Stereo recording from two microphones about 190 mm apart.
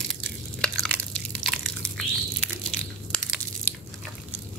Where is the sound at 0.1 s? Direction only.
5° left (ahead or behind).